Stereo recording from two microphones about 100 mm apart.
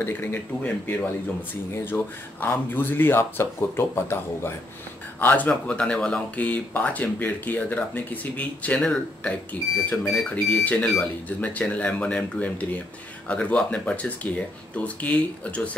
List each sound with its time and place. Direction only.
0.0 s speech: 20° left (ahead or behind)